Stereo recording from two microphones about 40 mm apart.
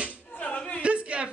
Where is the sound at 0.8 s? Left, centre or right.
Right.